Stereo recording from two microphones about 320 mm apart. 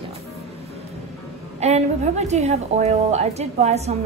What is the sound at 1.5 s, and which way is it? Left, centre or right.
A woman's voice, centre.